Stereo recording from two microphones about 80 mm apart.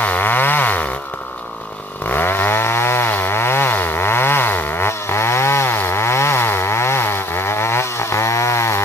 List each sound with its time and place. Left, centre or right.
0.0 s chainsaw: left
2.0 s chainsaw: left